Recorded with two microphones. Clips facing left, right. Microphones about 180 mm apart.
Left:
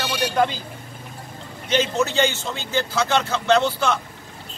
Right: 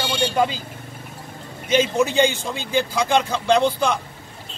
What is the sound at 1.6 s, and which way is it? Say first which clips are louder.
Speech: right 3 dB; 10° right (ahead or behind).